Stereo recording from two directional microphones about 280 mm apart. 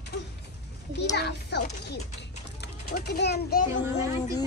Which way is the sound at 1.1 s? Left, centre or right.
Left.